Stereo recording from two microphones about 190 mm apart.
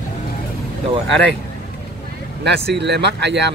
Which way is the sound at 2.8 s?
65° right (ahead or behind).